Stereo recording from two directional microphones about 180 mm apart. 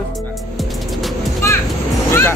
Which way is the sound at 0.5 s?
Centre (ahead or behind).